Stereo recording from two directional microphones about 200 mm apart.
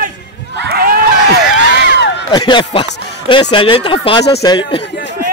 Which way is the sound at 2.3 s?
25° left (ahead or behind).